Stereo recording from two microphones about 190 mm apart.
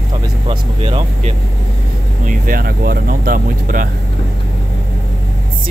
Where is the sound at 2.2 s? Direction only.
45° right (ahead or behind).